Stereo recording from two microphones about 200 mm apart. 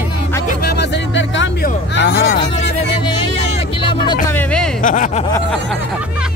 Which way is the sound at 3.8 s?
25° left (ahead or behind).